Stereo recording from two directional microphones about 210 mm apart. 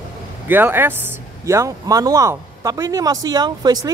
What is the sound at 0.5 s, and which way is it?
Speech, 10° right (ahead or behind).